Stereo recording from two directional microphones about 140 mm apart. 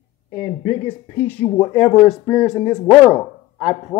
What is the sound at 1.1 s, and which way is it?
Speech, 15° left (ahead or behind).